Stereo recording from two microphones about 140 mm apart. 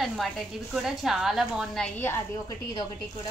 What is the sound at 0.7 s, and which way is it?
A woman's voice, centre (ahead or behind).